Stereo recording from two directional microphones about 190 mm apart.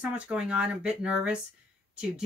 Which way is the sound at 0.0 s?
5° right (ahead or behind).